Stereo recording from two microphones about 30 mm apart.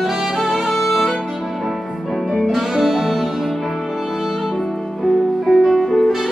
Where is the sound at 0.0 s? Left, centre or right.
Centre.